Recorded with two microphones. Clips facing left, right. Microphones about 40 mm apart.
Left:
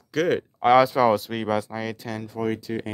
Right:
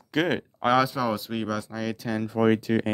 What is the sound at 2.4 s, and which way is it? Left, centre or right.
Speech, right.